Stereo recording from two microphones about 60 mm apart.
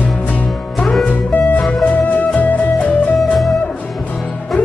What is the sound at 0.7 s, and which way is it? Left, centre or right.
Music, centre.